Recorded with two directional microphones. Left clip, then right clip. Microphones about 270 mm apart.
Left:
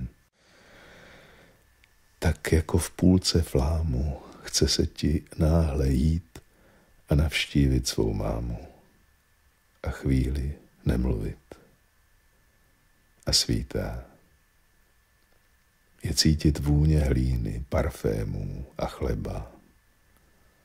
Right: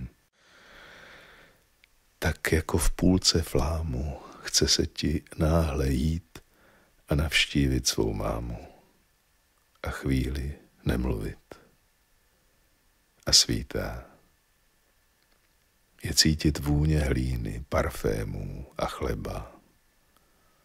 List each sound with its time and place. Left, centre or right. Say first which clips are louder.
0.0 s sigh: left 3 dB; centre
9.8 s speech: left 1 dB; centre
13.2 s speech: right 3 dB; right
16.0 s speech: right 1 dB; right